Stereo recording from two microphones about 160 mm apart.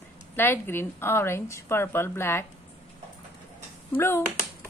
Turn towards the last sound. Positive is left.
turn(degrees=15)  # may be behind; listen again after turning